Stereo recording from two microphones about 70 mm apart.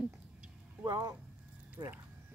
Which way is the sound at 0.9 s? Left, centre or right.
Right.